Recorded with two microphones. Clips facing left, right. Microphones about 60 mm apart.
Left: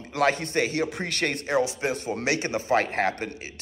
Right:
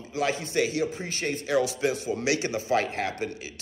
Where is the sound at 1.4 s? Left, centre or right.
Left.